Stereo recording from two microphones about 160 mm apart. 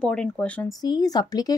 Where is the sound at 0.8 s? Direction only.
25° left (ahead or behind).